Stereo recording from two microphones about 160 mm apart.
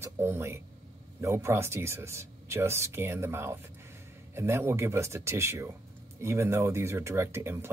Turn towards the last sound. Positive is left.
turn(degrees=-15)  # may be behind; listen again after turning